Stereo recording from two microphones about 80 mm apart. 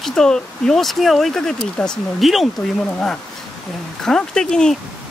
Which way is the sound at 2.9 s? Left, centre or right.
Centre.